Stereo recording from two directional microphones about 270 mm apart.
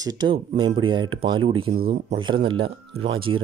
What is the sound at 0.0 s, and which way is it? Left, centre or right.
Speech, centre.